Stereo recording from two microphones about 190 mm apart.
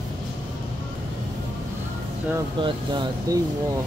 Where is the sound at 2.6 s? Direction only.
25° right (ahead or behind).